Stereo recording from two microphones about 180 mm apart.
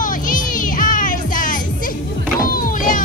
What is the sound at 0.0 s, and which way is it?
Music, 50° left (ahead or behind).